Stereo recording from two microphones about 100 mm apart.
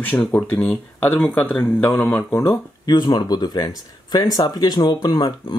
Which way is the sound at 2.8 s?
45° left (ahead or behind).